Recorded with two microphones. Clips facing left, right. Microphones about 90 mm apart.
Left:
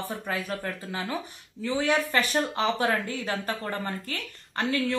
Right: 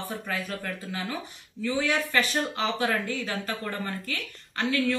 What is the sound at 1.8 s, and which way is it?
Speech, 50° left (ahead or behind).